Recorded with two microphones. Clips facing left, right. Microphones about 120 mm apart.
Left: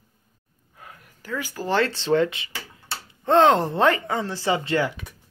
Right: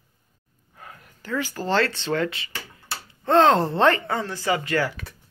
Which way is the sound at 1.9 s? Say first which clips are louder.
Left 4 dB; 25° left (ahead or behind).